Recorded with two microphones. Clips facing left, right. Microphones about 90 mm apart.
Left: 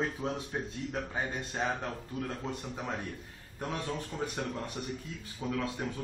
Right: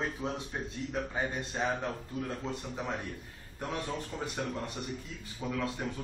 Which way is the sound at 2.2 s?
Centre (ahead or behind).